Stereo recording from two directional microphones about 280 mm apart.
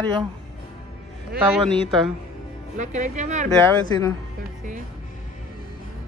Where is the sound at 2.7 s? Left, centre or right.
Right.